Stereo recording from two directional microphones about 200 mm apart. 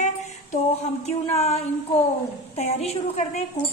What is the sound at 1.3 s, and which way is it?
A woman's voice, 35° left (ahead or behind).